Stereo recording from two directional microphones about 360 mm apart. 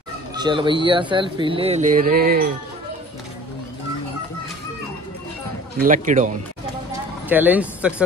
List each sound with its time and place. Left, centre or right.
0.3 s speech: centre
5.8 s a man's voice: right
7.2 s speech: centre